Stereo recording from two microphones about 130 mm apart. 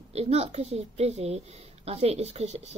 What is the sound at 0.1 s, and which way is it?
A woman's voice, 55° right (ahead or behind).